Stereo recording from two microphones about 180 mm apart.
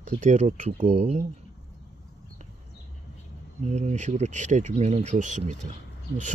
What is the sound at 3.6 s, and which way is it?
Speech, 40° right (ahead or behind).